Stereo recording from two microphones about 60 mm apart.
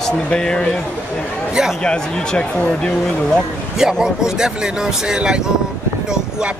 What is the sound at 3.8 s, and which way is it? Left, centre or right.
A man's voice, centre.